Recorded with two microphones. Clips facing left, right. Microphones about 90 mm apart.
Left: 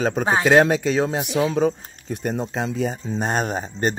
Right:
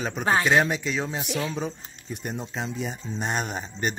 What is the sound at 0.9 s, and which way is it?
Speech, 55° left (ahead or behind).